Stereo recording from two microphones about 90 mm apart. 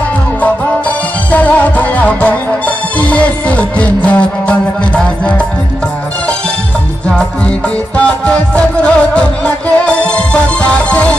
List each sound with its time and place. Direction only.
0.4 s music: 15° left (ahead or behind)
7.9 s music: 10° left (ahead or behind)